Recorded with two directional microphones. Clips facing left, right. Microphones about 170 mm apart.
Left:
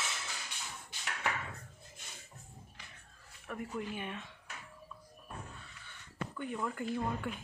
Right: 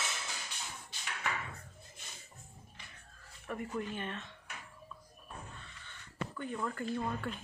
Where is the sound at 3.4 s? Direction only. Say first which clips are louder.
Right 1 dB; centre (ahead or behind).